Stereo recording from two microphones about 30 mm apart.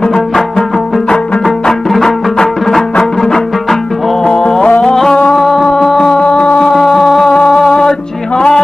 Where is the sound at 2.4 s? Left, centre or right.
Centre.